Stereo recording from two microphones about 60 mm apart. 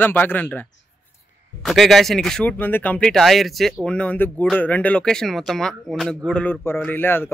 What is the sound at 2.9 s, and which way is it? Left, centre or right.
Speech, centre.